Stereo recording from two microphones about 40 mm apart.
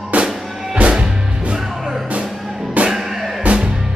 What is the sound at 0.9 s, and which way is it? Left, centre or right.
Music, right.